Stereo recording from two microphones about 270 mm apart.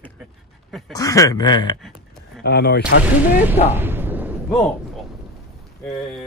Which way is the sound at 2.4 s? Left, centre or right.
Left.